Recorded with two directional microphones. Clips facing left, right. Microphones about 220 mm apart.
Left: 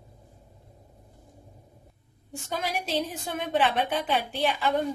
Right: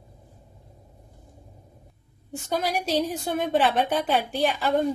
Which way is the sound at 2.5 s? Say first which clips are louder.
Right 4 dB; 40° right (ahead or behind).